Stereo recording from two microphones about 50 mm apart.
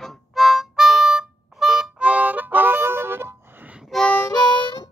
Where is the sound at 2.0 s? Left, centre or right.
Right.